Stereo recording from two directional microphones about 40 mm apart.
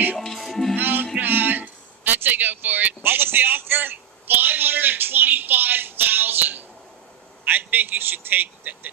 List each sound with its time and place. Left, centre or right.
0.4 s music: centre
0.7 s music: right
1.2 s a sound: right
3.0 s a man's voice: right